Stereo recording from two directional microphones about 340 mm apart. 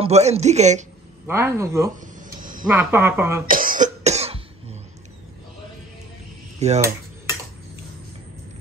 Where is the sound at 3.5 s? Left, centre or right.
Right.